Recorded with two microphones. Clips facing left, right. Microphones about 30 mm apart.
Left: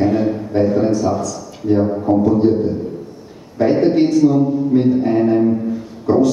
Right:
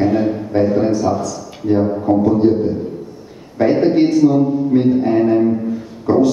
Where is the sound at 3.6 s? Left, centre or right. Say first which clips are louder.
Right 1 dB; centre.